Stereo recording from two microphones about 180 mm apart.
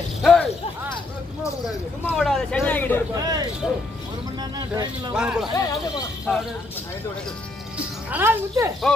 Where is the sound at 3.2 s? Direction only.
20° right (ahead or behind).